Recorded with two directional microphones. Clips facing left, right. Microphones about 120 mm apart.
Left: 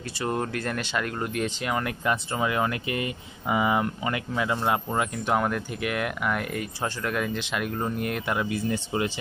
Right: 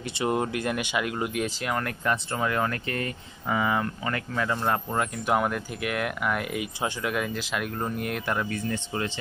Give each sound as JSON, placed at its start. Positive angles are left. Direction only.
{"t": 0.2, "sound": "speech", "side_deg": -15}